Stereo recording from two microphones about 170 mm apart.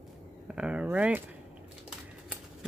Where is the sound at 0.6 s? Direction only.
5° right (ahead or behind).